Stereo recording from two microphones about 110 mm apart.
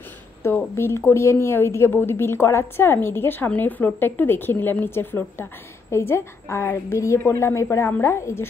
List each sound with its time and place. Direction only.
0.4 s speech: 20° left (ahead or behind)